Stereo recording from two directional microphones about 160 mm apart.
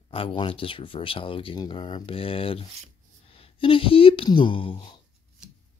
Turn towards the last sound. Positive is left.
turn(degrees=35)  # may be behind; listen again after turning